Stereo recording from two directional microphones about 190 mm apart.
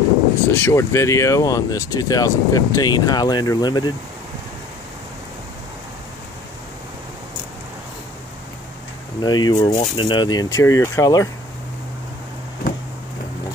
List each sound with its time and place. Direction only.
0.5 s speech: 15° left (ahead or behind)
9.2 s speech: 20° left (ahead or behind)